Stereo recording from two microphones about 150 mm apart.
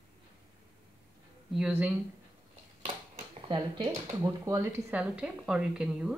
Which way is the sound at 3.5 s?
30° right (ahead or behind).